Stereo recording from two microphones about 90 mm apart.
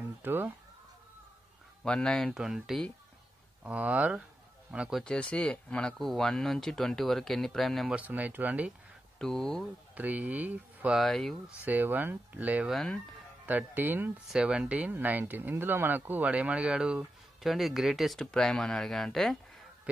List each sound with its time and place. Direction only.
0.2 s speech: 25° right (ahead or behind)
1.8 s speech: 10° left (ahead or behind)
2.3 s speech: 5° right (ahead or behind)
3.6 s speech: 15° right (ahead or behind)
5.0 s speech: 10° left (ahead or behind)
7.9 s speech: 15° right (ahead or behind)
9.2 s speech: 5° left (ahead or behind)
9.9 s speech: 20° right (ahead or behind)
10.9 s speech: centre (ahead or behind)
11.6 s speech: 20° right (ahead or behind)
12.6 s speech: centre (ahead or behind)
13.5 s speech: 20° right (ahead or behind)
14.3 s speech: 10° right (ahead or behind)